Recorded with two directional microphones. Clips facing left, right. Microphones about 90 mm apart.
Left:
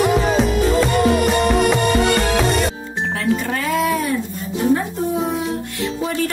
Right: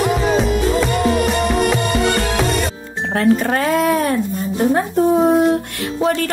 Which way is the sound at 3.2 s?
50° right (ahead or behind).